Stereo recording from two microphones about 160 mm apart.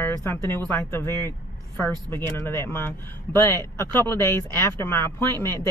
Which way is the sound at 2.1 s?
15° left (ahead or behind).